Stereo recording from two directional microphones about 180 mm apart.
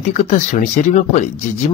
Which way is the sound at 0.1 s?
45° left (ahead or behind).